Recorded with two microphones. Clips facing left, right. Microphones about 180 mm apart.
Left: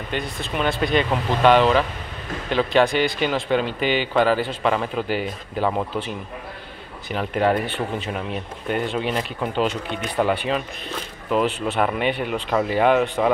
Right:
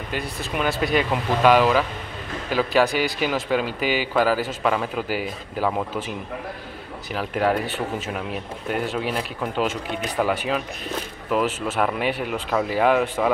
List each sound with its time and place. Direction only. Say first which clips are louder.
0.1 s speech: left 1 dB; 5° right (ahead or behind)
7.1 s speech: left 2 dB; centre (ahead or behind)